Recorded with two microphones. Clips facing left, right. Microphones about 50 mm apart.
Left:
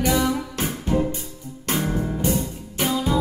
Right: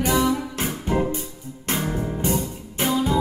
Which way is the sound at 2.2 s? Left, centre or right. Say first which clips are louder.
Left 1 dB; right.